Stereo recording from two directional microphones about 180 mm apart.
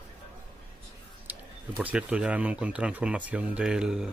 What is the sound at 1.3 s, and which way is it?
Speech, 10° right (ahead or behind).